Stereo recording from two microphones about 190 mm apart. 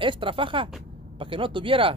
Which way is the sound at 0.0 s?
25° right (ahead or behind).